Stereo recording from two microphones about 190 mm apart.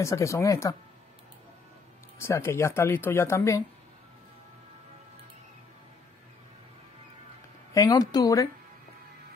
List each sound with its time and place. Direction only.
0.0 s speech: 15° left (ahead or behind)
2.1 s speech: 15° left (ahead or behind)
7.7 s a woman's voice: 20° left (ahead or behind)